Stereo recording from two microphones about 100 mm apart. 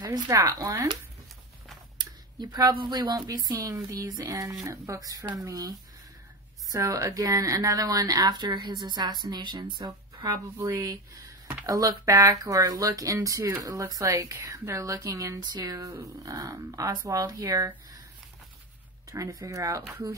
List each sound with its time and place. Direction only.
0.0 s speech: 35° right (ahead or behind)
2.3 s a woman's voice: 40° right (ahead or behind)
10.2 s speech: 35° right (ahead or behind)
19.0 s speech: 35° right (ahead or behind)